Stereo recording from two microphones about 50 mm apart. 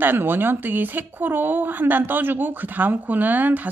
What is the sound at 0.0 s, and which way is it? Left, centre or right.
A woman's voice, right.